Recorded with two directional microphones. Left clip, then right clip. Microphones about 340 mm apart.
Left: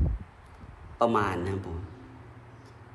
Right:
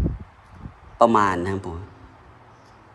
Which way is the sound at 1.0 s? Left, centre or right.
Right.